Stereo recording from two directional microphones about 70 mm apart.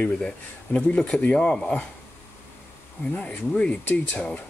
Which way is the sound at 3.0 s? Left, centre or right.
Left.